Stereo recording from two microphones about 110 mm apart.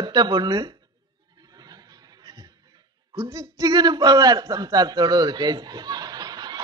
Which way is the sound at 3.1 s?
35° right (ahead or behind).